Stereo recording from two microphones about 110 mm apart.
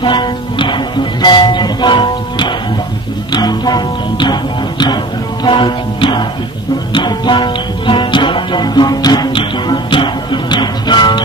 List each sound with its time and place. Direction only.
0.0 s music: 45° left (ahead or behind)
3.3 s speech: 40° left (ahead or behind)
6.9 s music: 45° left (ahead or behind)